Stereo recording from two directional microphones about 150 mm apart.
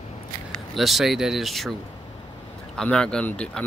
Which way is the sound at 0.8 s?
Centre (ahead or behind).